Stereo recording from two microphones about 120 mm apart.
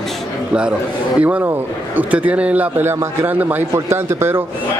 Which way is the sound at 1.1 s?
10° right (ahead or behind).